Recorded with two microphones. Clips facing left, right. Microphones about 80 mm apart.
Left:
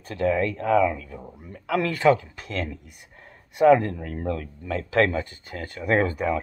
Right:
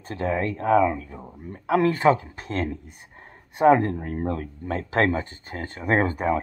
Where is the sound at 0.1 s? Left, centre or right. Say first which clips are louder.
Left 2 dB; right.